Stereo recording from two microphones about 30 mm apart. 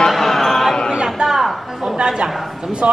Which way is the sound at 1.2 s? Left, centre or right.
Centre.